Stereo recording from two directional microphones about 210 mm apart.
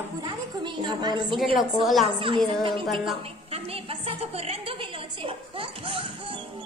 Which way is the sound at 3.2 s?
30° right (ahead or behind).